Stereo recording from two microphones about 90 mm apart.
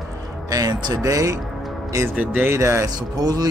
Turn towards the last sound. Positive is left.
turn(degrees=-45)  # may be behind; listen again after turning